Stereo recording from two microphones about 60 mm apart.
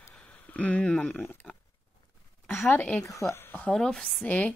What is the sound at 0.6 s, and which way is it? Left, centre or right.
Speech, left.